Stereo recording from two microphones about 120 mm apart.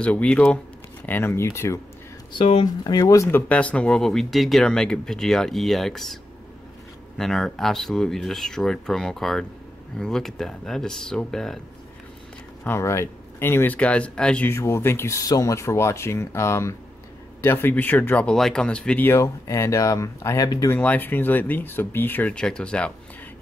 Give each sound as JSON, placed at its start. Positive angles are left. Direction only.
{"t": 0.0, "sound": "speech", "side_deg": 10}
{"t": 2.3, "sound": "speech", "side_deg": 50}
{"t": 2.6, "sound": "speech", "side_deg": 35}
{"t": 7.2, "sound": "speech", "side_deg": 5}
{"t": 12.6, "sound": "speech", "side_deg": 20}
{"t": 14.5, "sound": "speech", "side_deg": 20}
{"t": 19.0, "sound": "speech", "side_deg": 25}
{"t": 20.7, "sound": "speech", "side_deg": 15}